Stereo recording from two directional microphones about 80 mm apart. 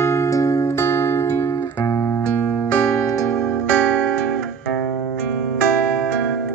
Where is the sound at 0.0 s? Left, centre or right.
Left.